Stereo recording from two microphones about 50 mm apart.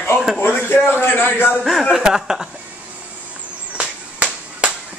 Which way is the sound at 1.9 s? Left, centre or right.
Centre.